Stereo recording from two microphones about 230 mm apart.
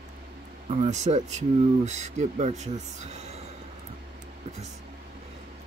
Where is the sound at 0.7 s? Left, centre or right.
Right.